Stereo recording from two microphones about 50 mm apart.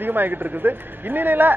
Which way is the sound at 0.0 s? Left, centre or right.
Right.